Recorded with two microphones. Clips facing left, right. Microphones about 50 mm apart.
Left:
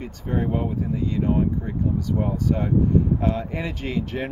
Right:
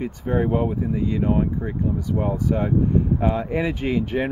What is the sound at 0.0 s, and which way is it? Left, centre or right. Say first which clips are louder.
Speech: right 4 dB; centre.